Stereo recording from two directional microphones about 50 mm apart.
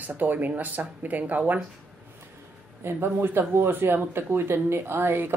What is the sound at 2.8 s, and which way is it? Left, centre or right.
Speech, right.